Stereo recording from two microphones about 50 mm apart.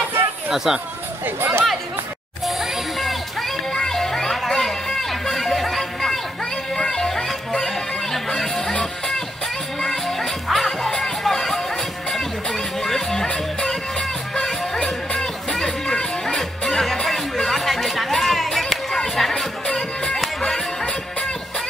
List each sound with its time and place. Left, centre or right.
0.7 s speech: centre
1.2 s speech: right
2.4 s music: centre
9.8 s music: centre